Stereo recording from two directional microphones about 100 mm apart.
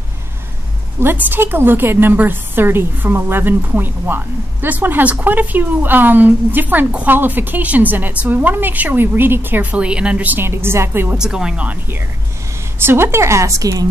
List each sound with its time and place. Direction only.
0.9 s a woman's voice: 20° right (ahead or behind)
11.1 s speech: 5° right (ahead or behind)
12.7 s a woman's voice: 25° right (ahead or behind)